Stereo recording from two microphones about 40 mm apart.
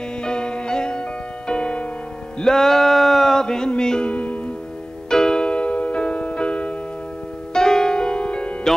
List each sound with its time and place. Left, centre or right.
0.2 s music: left
2.4 s a sound: centre
3.3 s a sound: centre
4.1 s music: left
5.1 s music: centre
7.5 s music: centre